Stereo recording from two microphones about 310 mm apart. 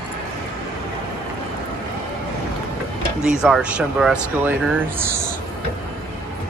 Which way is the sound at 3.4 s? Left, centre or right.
Centre.